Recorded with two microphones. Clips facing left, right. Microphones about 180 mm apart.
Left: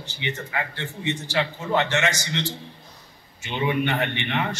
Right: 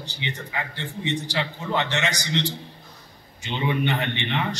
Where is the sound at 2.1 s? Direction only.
15° right (ahead or behind).